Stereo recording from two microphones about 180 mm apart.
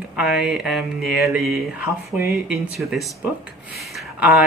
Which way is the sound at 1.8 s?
15° right (ahead or behind).